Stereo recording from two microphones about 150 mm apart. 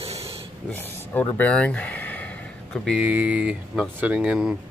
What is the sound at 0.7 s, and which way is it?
Speech, 10° left (ahead or behind).